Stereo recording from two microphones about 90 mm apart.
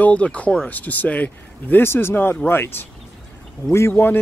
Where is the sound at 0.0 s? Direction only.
15° left (ahead or behind).